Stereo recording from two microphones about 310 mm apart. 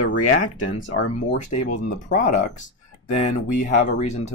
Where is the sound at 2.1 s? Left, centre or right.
Left.